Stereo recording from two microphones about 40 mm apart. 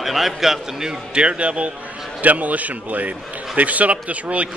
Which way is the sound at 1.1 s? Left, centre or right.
Right.